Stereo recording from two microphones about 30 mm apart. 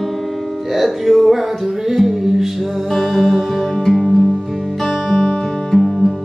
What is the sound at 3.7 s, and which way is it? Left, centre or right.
Music, centre.